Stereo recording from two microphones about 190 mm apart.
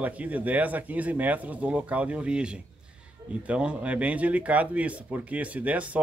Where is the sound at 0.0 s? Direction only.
10° right (ahead or behind).